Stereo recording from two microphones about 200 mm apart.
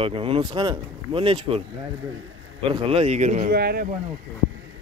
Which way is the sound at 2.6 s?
25° right (ahead or behind).